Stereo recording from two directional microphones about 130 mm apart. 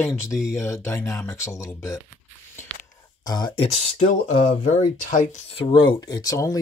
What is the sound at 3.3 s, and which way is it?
Speech, 30° left (ahead or behind).